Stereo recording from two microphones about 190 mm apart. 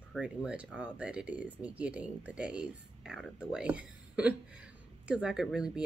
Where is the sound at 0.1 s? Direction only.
5° right (ahead or behind).